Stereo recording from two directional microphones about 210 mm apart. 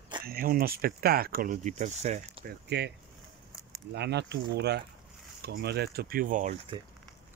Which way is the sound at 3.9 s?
55° right (ahead or behind).